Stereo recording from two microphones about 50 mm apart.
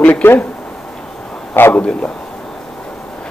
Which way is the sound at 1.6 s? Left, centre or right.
Left.